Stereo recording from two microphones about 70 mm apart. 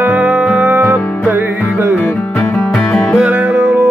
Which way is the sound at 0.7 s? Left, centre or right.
Right.